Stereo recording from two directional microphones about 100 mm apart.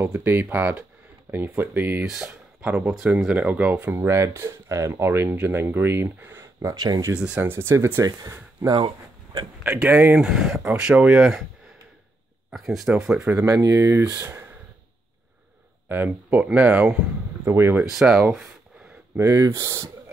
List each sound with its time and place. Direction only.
0.0 s speech: 20° right (ahead or behind)
3.9 s speech: 30° right (ahead or behind)
6.7 s speech: 45° right (ahead or behind)
7.2 s speech: 10° right (ahead or behind)
7.5 s speech: 25° right (ahead or behind)
9.6 s speech: 10° right (ahead or behind)
12.4 s speech: centre (ahead or behind)
13.5 s speech: 35° right (ahead or behind)
15.9 s speech: 20° right (ahead or behind)
17.9 s speech: 5° right (ahead or behind)
19.1 s speech: 30° right (ahead or behind)